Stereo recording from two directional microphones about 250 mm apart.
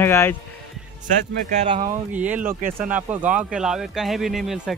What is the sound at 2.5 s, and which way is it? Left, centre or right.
Speech, right.